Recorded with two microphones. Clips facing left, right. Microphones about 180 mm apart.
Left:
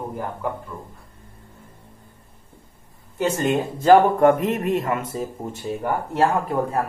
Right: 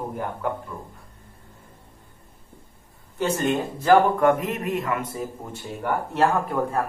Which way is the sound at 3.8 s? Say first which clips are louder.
Left 3 dB; 30° left (ahead or behind).